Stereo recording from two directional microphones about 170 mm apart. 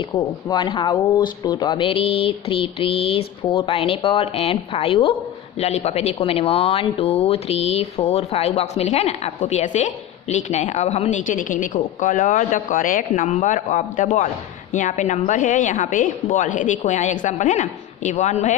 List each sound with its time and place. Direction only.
0.1 s speech: 25° left (ahead or behind); by 18.5 s 45° left (ahead or behind)